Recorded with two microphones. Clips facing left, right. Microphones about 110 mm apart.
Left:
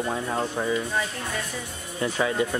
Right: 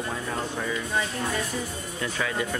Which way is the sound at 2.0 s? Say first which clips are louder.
Left 5 dB; 25° left (ahead or behind).